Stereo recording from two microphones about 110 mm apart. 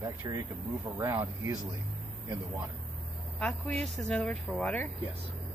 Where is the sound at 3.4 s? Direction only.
10° left (ahead or behind).